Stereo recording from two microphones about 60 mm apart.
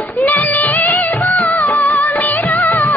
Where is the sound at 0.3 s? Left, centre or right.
Left.